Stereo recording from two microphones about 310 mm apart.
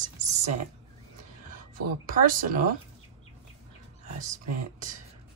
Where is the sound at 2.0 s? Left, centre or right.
Right.